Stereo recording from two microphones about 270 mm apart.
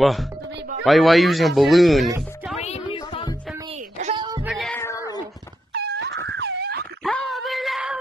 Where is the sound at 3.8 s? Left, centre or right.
Right.